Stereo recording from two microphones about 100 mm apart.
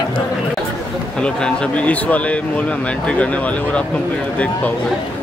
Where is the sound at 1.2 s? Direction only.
10° left (ahead or behind).